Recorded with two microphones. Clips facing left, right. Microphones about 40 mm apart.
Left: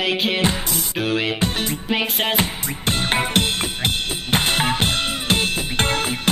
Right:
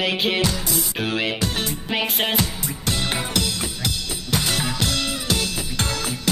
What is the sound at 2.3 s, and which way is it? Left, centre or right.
Music, left.